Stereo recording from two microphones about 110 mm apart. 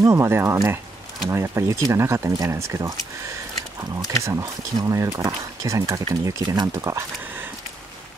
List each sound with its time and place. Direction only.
0.0 s speech: 25° right (ahead or behind)
4.2 s speech: 30° right (ahead or behind)
6.4 s speech: 40° right (ahead or behind)